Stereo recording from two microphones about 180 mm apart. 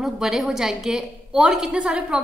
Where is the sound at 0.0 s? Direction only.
Centre (ahead or behind).